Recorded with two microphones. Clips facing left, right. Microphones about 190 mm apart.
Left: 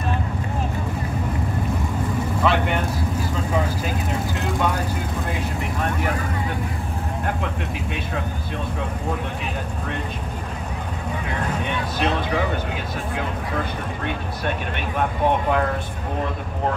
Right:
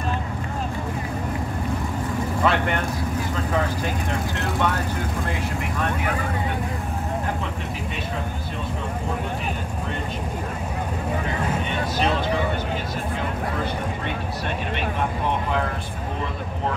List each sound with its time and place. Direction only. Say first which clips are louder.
2.4 s speech: left 1 dB; 5° left (ahead or behind)